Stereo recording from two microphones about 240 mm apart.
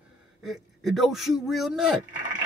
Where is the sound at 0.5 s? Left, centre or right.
Centre.